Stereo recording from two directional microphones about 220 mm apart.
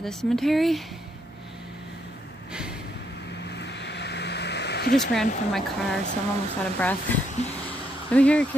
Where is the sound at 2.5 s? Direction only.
5° right (ahead or behind).